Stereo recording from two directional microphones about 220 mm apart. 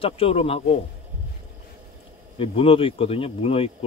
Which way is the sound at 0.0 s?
25° left (ahead or behind).